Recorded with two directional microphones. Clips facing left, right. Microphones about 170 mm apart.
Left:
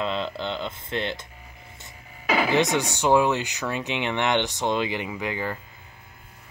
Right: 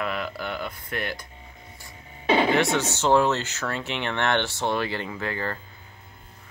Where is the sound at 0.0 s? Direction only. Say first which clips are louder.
Left 2 dB; 25° left (ahead or behind).